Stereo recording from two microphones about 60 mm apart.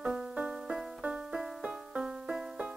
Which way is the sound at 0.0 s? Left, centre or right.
Centre.